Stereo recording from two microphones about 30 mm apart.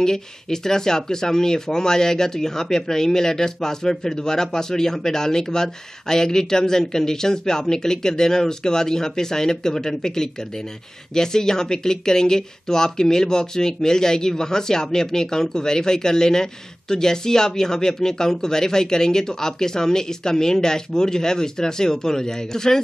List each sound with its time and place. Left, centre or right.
0.0 s speech: centre